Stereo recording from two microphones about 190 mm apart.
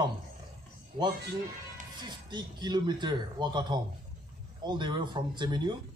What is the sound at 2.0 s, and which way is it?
A man's voice, 20° right (ahead or behind).